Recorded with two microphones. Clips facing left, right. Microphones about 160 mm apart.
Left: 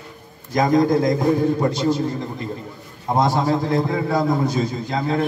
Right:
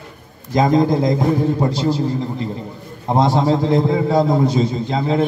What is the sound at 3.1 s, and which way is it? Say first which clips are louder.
A man's voice: right 3 dB; 25° right (ahead or behind).